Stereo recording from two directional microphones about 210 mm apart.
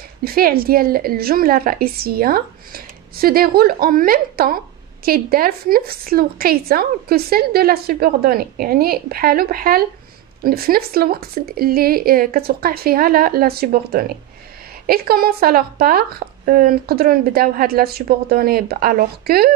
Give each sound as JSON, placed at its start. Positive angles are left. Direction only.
{"t": 0.2, "sound": "speech", "side_deg": -45}